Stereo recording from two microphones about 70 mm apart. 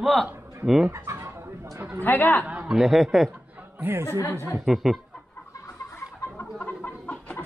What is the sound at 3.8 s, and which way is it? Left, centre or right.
Speech, right.